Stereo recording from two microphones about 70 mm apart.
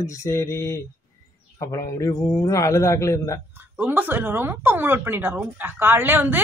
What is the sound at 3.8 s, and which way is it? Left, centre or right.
Speech, right.